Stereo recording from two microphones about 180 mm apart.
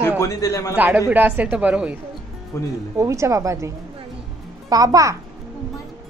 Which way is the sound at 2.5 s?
15° left (ahead or behind).